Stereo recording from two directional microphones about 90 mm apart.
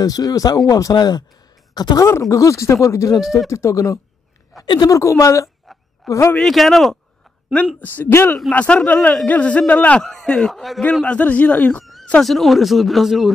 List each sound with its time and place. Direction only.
0.0 s speech: 45° left (ahead or behind)
2.0 s speech: 35° left (ahead or behind)
6.3 s speech: 5° left (ahead or behind)
7.8 s speech: 20° left (ahead or behind)
8.5 s speech: 15° left (ahead or behind)
10.0 s speech: 5° left (ahead or behind)
11.1 s speech: 15° left (ahead or behind)
12.2 s speech: centre (ahead or behind)